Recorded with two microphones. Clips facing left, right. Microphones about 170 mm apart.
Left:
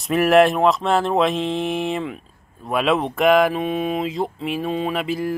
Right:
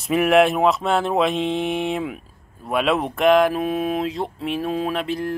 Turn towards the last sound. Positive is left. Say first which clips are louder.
# left 1 dB
turn(degrees=5)  # may be behind; listen again after turning